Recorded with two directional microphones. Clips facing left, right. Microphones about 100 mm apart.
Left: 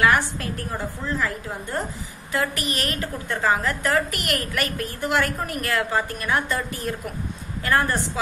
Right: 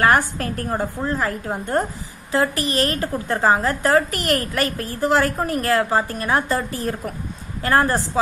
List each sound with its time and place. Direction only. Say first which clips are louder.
0.0 s a woman's voice: right 3 dB; 40° right (ahead or behind)
2.3 s a woman's voice: right 6 dB; 35° right (ahead or behind)